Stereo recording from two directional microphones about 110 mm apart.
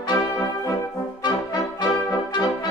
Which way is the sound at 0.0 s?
45° left (ahead or behind).